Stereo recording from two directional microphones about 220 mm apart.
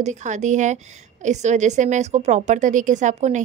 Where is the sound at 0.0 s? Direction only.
35° right (ahead or behind).